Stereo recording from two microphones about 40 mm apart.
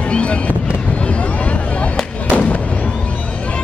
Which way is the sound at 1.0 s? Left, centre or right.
Left.